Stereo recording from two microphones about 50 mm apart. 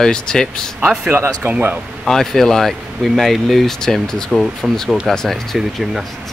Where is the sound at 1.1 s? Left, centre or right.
Right.